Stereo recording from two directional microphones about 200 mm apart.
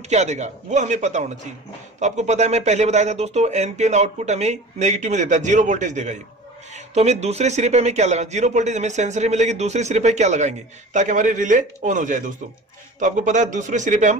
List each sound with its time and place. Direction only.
0.1 s speech: 35° right (ahead or behind)